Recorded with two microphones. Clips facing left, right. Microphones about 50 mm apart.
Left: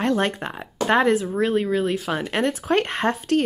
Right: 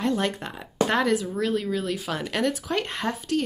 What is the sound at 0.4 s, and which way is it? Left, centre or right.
Speech, left.